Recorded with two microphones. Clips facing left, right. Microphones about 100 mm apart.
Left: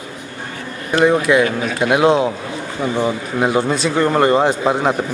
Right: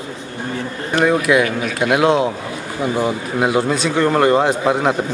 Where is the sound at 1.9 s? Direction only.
Centre (ahead or behind).